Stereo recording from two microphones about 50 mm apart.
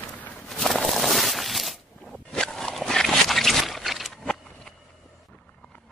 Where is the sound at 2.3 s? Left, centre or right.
Centre.